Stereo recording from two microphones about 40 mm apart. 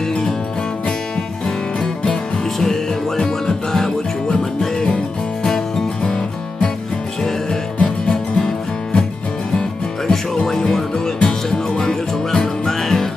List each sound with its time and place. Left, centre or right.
2.6 s music: centre
7.8 s music: centre
10.0 s music: centre